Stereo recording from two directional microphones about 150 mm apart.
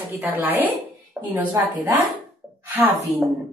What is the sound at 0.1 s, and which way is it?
Speech, 10° right (ahead or behind).